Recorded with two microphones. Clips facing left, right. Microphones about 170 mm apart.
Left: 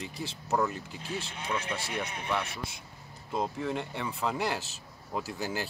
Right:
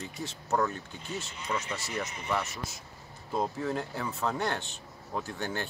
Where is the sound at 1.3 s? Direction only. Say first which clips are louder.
Even; 60° left (ahead or behind).